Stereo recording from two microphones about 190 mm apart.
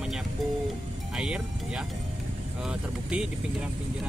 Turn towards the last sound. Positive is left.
turn(degrees=-5)  # may be behind; listen again after turning